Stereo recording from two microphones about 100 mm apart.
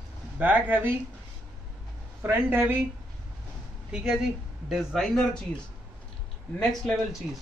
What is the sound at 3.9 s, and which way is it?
Speech, 10° right (ahead or behind).